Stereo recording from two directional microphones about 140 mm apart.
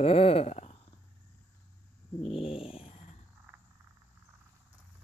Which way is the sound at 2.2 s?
45° left (ahead or behind).